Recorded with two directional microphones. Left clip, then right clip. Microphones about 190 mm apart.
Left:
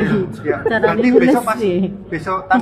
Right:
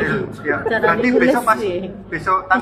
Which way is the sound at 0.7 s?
35° left (ahead or behind).